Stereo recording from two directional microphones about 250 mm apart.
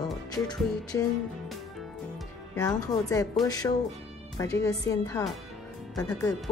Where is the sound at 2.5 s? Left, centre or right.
Centre.